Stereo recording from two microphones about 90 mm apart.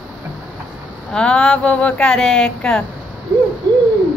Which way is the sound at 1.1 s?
10° left (ahead or behind).